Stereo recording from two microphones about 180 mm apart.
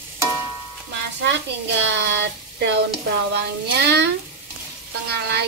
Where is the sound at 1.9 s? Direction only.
70° right (ahead or behind).